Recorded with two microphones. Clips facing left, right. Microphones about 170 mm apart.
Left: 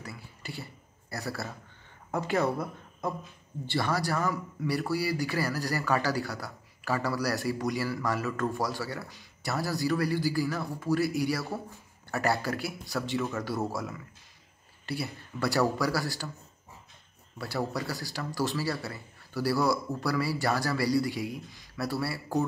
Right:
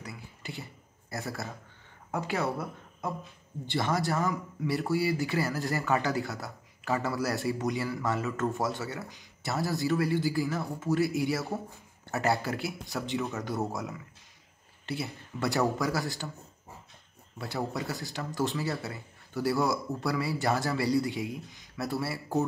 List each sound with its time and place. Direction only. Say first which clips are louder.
0.0 s a sound: even; 20° right (ahead or behind)
1.1 s speech: left 1 dB; 20° right (ahead or behind)
2.0 s speech: left 3 dB; 10° right (ahead or behind)
3.6 s speech: even; 20° right (ahead or behind)
17.4 s speech: left 1 dB; 20° right (ahead or behind)